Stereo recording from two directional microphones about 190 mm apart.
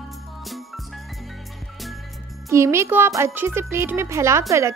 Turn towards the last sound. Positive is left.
turn(degrees=-15)  # may be behind; listen again after turning